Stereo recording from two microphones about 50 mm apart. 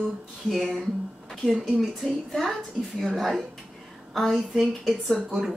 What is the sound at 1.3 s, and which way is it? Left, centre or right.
Speech, centre.